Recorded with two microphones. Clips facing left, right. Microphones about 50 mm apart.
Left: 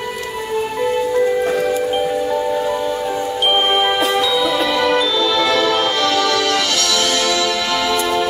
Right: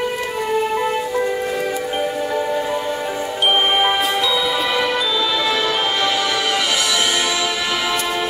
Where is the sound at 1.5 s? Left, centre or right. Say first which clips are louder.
Left 4 dB; centre.